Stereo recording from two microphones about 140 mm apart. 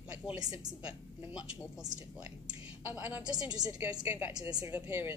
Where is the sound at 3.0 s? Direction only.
10° right (ahead or behind).